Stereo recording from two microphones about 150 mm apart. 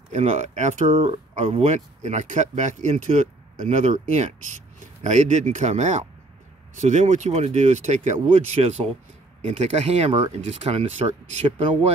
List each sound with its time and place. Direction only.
0.1 s speech: 50° right (ahead or behind)